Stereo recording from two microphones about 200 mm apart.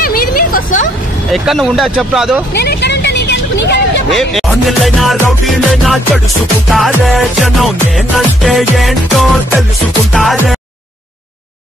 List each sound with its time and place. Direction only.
0.0 s vehicle: 45° left (ahead or behind)
1.3 s music: centre (ahead or behind)
2.5 s vehicle: 55° left (ahead or behind)
4.1 s music: centre (ahead or behind)